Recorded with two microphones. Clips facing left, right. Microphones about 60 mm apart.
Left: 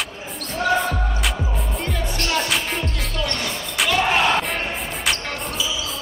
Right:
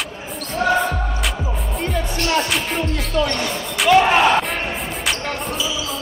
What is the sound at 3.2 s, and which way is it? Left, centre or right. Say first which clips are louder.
Music: right 5 dB; centre.